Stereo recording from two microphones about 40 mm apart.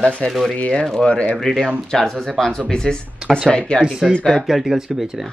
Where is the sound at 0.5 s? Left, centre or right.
Left.